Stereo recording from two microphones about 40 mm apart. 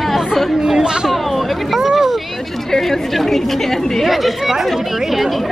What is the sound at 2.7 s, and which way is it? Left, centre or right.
A woman's voice, centre.